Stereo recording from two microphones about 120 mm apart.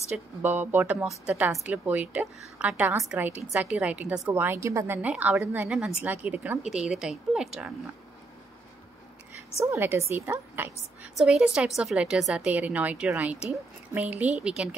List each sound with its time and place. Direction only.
0.4 s a woman's voice: 15° right (ahead or behind)
5.7 s a woman's voice: 5° right (ahead or behind)
9.7 s a woman's voice: 20° right (ahead or behind)
11.1 s a woman's voice: 5° right (ahead or behind)